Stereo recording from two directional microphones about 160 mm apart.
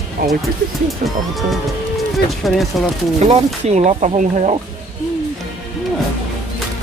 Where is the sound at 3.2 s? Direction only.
40° right (ahead or behind).